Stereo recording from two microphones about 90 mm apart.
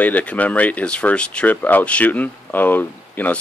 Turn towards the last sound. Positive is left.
turn(degrees=20)  # may be behind; listen again after turning